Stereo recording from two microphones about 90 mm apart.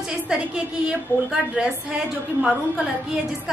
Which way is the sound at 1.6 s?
15° right (ahead or behind).